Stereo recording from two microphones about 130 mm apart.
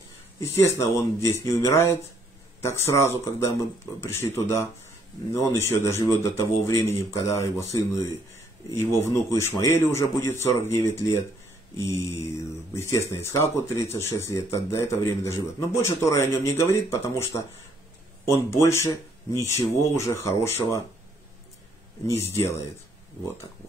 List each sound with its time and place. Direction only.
0.4 s a man's voice: 20° left (ahead or behind)
22.0 s a man's voice: 20° left (ahead or behind)